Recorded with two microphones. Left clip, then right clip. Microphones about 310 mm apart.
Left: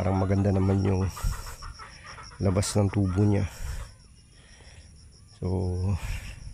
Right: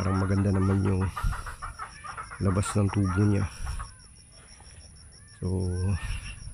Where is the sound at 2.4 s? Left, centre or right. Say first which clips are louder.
Left 3 dB; centre.